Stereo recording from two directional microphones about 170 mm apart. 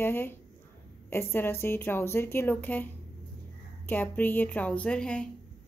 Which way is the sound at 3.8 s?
10° left (ahead or behind).